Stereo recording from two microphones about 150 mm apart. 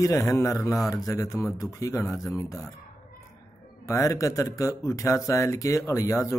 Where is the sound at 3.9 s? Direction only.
20° left (ahead or behind).